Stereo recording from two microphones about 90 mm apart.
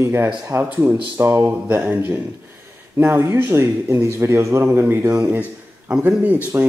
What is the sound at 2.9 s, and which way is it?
Speech, 25° right (ahead or behind).